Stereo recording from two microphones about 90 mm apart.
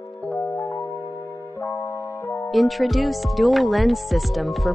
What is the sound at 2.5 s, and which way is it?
Speech, centre (ahead or behind).